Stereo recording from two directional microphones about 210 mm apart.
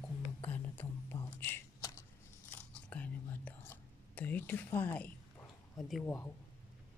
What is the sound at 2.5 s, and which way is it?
Whispering, 5° left (ahead or behind).